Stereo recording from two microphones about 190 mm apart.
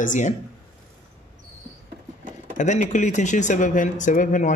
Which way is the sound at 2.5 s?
40° left (ahead or behind).